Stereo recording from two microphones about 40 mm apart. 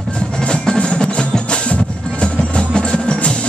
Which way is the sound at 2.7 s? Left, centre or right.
Left.